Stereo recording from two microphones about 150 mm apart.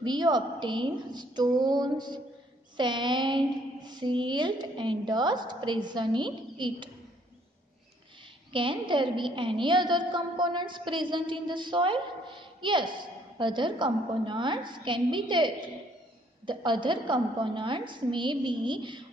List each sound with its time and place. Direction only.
0.0 s a woman's voice: 30° right (ahead or behind)
8.5 s a woman's voice: 35° right (ahead or behind)